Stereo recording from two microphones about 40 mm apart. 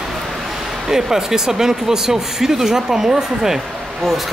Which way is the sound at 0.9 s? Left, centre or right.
Centre.